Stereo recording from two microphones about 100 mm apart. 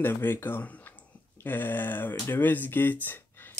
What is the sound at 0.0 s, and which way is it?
Speech, 20° left (ahead or behind).